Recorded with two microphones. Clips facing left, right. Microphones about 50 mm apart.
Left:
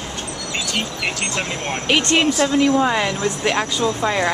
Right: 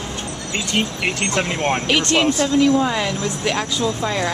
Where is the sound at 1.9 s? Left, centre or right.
Centre.